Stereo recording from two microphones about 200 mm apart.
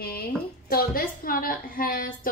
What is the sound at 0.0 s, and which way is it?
A woman's voice, 50° left (ahead or behind).